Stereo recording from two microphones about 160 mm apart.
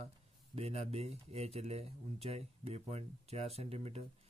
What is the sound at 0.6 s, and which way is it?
Speech, 40° right (ahead or behind).